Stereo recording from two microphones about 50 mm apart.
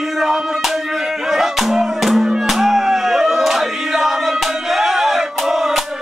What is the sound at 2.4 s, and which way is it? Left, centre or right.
Battle cry, centre.